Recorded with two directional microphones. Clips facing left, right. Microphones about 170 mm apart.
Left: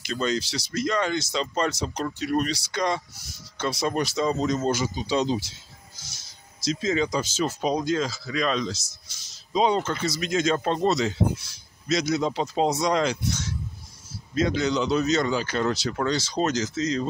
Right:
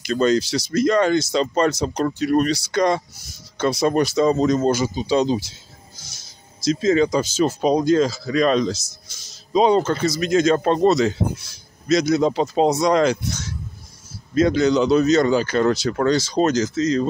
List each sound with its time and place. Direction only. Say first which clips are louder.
0.0 s speech: right 9 dB; 45° right (ahead or behind)
6.6 s speech: right 7 dB; 45° right (ahead or behind)